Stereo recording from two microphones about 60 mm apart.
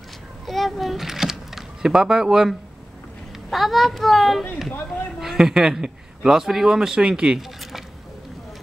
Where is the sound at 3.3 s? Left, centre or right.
Centre.